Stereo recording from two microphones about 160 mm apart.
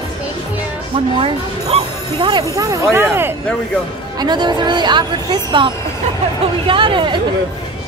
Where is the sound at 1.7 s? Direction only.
30° right (ahead or behind).